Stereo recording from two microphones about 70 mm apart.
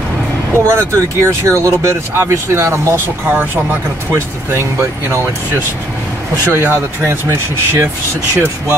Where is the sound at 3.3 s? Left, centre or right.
Right.